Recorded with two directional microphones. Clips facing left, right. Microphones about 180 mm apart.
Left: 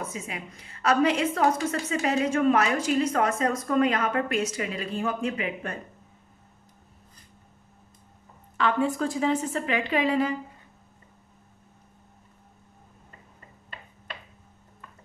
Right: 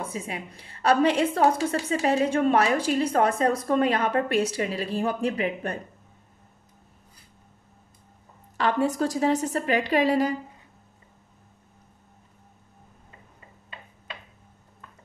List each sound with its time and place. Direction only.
0.0 s a woman's voice: 30° right (ahead or behind)
8.5 s a woman's voice: 40° right (ahead or behind)